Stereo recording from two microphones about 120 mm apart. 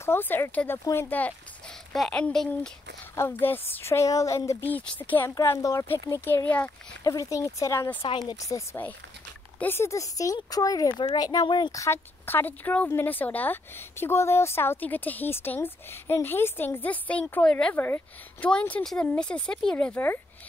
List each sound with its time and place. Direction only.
0.0 s a child's voice: 20° left (ahead or behind)
3.2 s a child's voice: 20° left (ahead or behind)
4.6 s speech: 15° left (ahead or behind)
5.3 s a child's voice: 25° left (ahead or behind)
7.0 s a child's voice: 30° left (ahead or behind)
11.7 s speech: 25° left (ahead or behind)
17.7 s a child's voice: 20° left (ahead or behind)